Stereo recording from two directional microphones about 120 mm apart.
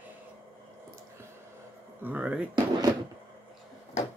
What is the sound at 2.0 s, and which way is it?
Speech, 10° right (ahead or behind).